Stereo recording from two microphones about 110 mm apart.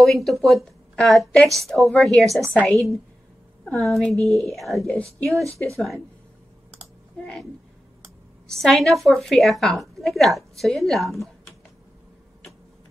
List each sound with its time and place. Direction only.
0.0 s a woman's voice: centre (ahead or behind)
8.5 s a woman's voice: 5° left (ahead or behind)